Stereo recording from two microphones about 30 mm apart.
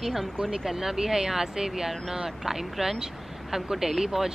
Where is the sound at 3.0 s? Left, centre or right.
Centre.